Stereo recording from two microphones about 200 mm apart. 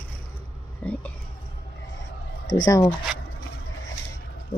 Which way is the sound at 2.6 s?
20° left (ahead or behind).